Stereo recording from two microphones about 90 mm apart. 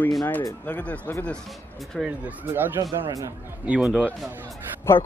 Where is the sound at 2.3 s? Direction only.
20° right (ahead or behind).